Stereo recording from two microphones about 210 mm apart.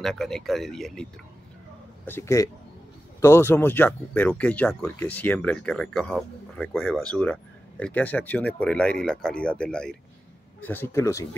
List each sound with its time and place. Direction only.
0.0 s speech: centre (ahead or behind)
2.0 s speech: 10° left (ahead or behind)